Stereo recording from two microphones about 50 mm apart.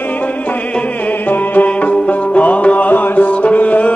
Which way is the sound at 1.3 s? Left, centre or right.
Left.